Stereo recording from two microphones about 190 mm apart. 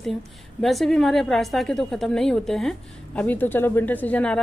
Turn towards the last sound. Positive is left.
turn(degrees=5)  # may be behind; listen again after turning